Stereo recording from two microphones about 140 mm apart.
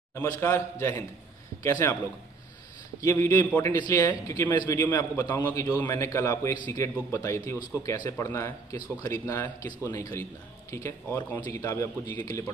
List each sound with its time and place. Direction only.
0.1 s a man's voice: 20° left (ahead or behind)
3.0 s a man's voice: 20° left (ahead or behind)
3.7 s a man's voice: 30° left (ahead or behind)
4.7 s a man's voice: 15° left (ahead or behind)